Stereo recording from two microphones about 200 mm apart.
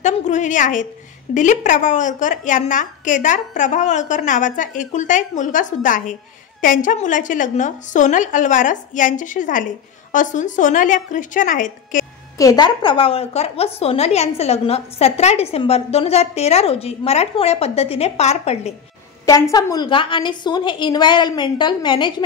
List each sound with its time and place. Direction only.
0.0 s a woman's voice: 35° left (ahead or behind)
12.4 s a woman's voice: 20° left (ahead or behind)
19.5 s a woman's voice: 20° left (ahead or behind)